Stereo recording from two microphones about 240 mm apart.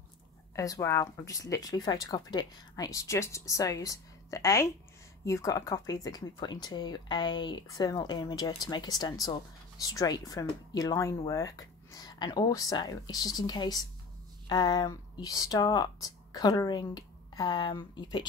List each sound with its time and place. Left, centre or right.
0.6 s speech: centre